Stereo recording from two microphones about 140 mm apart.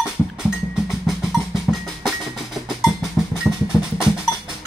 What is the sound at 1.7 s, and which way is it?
Music, centre (ahead or behind).